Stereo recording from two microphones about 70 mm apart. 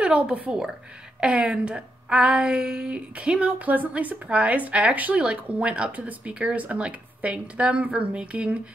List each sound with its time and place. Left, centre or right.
0.0 s a woman's voice: centre